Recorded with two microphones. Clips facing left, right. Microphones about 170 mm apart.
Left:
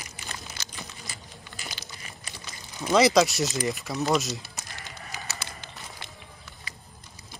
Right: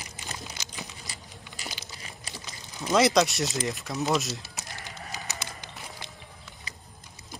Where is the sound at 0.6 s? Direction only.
15° right (ahead or behind).